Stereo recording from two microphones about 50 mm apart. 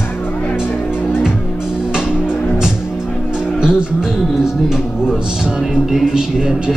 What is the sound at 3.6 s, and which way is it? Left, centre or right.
Music, centre.